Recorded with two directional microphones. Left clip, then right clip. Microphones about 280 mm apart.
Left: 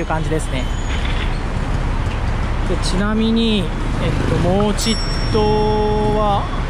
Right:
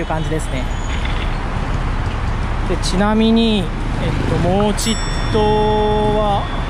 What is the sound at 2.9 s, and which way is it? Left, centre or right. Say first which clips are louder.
Speech: right 5 dB; centre.